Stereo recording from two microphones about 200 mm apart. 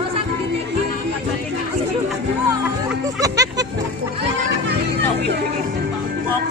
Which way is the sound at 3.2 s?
15° right (ahead or behind).